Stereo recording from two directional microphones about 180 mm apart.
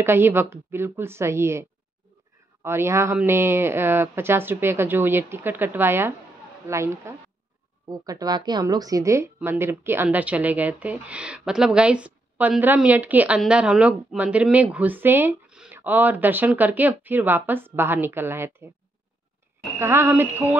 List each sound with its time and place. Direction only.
0.0 s a woman's voice: 15° right (ahead or behind)
19.8 s a woman's voice: 15° right (ahead or behind)